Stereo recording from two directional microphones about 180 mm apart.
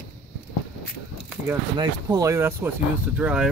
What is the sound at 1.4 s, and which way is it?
Speech, 20° right (ahead or behind).